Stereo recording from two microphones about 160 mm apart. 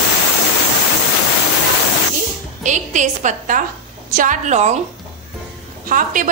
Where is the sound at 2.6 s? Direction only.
50° right (ahead or behind).